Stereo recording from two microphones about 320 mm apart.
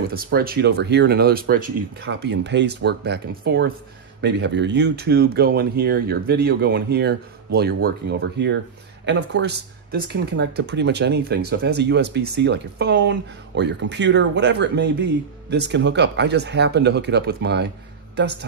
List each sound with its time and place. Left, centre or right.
0.1 s speech: right